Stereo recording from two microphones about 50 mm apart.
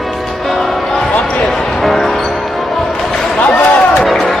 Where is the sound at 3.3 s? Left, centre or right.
Centre.